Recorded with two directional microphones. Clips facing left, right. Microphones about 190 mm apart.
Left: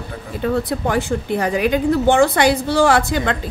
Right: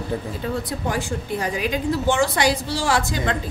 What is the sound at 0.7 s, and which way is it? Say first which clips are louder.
A woman's voice: left 6 dB; 60° left (ahead or behind).